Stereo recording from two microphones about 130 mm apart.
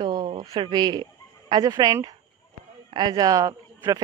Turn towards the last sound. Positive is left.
turn(degrees=-25)  # may be behind; listen again after turning